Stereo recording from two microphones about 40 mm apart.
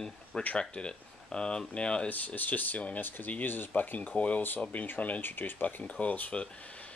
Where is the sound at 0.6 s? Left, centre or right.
Left.